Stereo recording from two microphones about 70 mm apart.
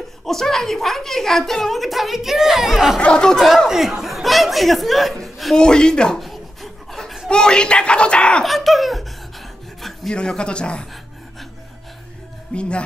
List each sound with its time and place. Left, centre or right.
0.2 s speech: centre
3.0 s speech: centre
3.3 s speech: centre
6.2 s a sound: centre
7.2 s speech: centre
8.5 s speech: centre
9.8 s a sound: centre
10.1 s speech: centre
12.5 s speech: centre